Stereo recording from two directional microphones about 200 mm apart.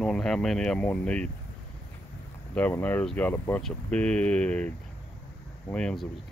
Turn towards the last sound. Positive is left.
turn(degrees=5)  # may be behind; listen again after turning